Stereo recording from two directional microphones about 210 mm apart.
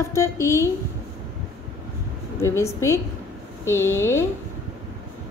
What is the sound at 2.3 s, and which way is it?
A woman's voice, 15° left (ahead or behind).